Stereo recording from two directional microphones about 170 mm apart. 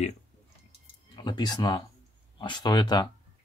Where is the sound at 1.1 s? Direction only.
25° left (ahead or behind).